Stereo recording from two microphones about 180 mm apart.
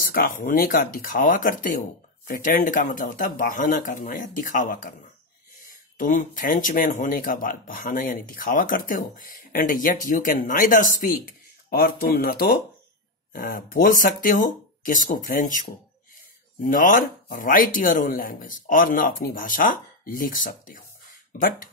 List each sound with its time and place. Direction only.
0.0 s speech: 55° left (ahead or behind)
5.9 s speech: 50° left (ahead or behind)